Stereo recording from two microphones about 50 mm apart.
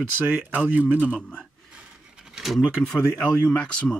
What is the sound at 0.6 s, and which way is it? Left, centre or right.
Speech, right.